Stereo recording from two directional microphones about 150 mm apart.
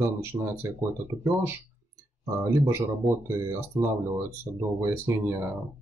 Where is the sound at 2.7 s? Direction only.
15° right (ahead or behind).